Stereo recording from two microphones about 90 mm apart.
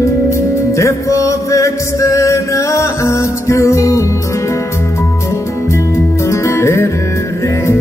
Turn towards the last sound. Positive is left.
turn(degrees=30)  # may be behind; listen again after turning